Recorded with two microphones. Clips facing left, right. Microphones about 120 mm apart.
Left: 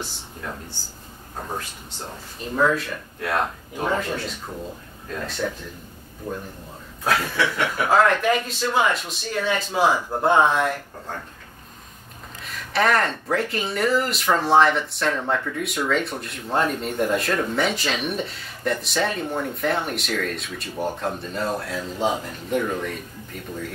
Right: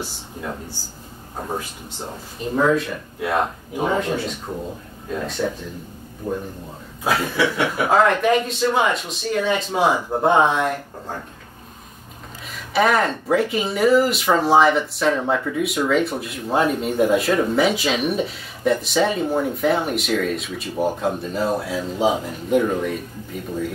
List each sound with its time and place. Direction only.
2.5 s speech: 10° right (ahead or behind)
6.2 s a man's voice: 25° right (ahead or behind)
7.1 s speech: 10° right (ahead or behind)
12.4 s speech: centre (ahead or behind)